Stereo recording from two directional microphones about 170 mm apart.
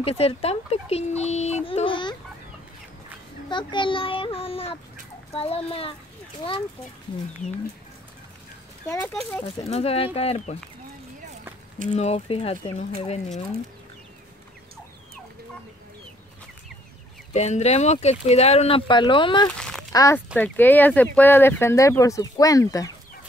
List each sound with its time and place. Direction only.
0.0 s speech: 35° left (ahead or behind)
3.4 s a child's voice: 30° left (ahead or behind)
8.8 s speech: 15° left (ahead or behind)
9.4 s speech: 35° left (ahead or behind)
11.9 s speech: 40° left (ahead or behind)
17.3 s speech: 40° left (ahead or behind); by 22.9 s 20° left (ahead or behind)